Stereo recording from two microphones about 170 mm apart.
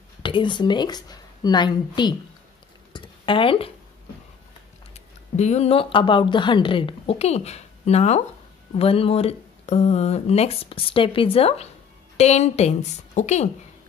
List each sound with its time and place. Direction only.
0.2 s speech: 30° left (ahead or behind)
2.9 s a sound: 30° left (ahead or behind)
4.9 s speech: 40° left (ahead or behind)